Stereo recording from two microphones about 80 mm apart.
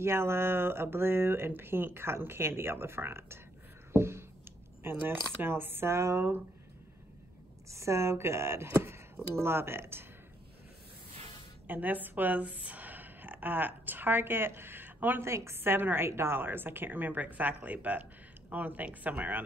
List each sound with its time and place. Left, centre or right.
0.0 s speech: right
3.9 s a sound: right
5.4 s a woman's voice: right
7.7 s speech: right
11.6 s a woman's voice: right